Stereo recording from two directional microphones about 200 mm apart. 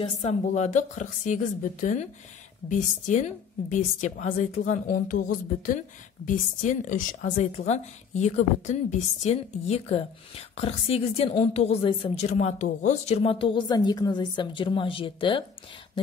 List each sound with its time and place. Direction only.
0.2 s a woman's voice: 35° left (ahead or behind)